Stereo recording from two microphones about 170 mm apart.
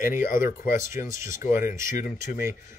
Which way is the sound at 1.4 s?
50° left (ahead or behind).